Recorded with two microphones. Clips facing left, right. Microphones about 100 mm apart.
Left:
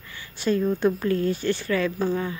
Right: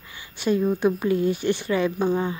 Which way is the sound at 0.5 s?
10° right (ahead or behind).